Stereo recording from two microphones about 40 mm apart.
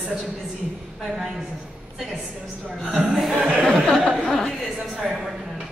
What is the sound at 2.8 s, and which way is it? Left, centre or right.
Speech, centre.